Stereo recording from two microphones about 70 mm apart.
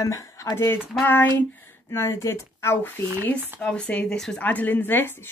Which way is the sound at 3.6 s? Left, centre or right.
Centre.